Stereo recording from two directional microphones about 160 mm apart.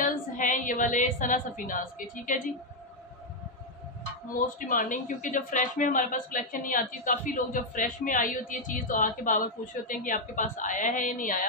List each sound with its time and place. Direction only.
0.0 s female singing: 55° left (ahead or behind)
4.3 s a woman's voice: 60° left (ahead or behind)